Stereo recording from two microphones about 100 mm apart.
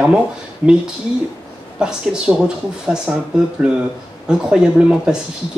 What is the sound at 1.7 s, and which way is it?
Speech, 10° right (ahead or behind).